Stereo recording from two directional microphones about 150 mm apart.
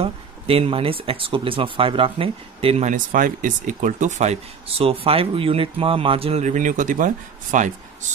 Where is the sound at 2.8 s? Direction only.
60° right (ahead or behind).